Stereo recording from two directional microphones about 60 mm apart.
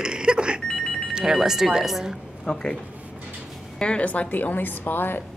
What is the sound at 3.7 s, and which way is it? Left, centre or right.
A woman's voice, centre.